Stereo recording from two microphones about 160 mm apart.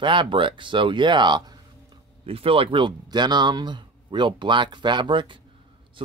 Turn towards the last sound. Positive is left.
turn(degrees=-30)  # may be behind; listen again after turning